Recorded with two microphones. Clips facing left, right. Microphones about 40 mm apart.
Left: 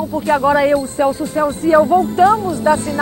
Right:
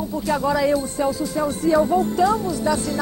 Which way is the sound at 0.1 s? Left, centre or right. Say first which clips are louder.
Left 8 dB; left.